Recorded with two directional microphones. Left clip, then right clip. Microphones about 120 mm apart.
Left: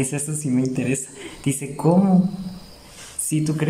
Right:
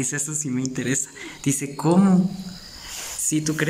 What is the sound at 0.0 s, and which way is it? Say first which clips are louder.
Speech: left 1 dB; 15° left (ahead or behind).